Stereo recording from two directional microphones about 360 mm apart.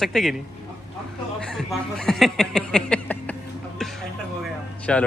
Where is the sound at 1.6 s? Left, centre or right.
Centre.